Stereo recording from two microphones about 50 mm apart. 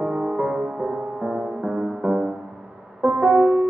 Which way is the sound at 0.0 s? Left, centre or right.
Centre.